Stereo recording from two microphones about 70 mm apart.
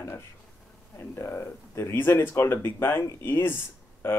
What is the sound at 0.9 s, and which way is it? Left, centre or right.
Speech, left.